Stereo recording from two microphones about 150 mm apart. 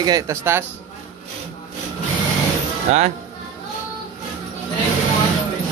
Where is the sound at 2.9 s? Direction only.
50° right (ahead or behind).